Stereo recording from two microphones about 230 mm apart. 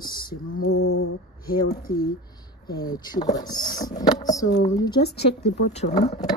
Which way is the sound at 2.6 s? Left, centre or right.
Centre.